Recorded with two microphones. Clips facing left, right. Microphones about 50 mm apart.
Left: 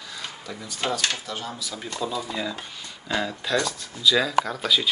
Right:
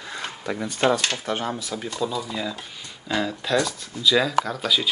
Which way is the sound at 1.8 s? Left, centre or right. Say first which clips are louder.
Right 1 dB; centre.